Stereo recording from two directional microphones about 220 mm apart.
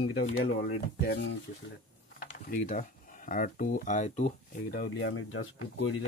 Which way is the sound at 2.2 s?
35° left (ahead or behind).